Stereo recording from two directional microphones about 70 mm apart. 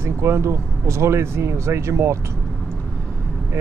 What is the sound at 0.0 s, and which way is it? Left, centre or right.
Speech, right.